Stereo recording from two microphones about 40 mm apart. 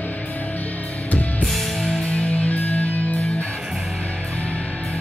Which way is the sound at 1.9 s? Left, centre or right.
Left.